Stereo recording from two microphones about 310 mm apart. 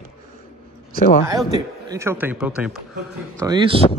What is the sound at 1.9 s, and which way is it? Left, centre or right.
Speech, centre.